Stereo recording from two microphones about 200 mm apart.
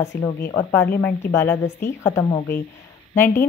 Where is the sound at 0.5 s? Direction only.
15° left (ahead or behind).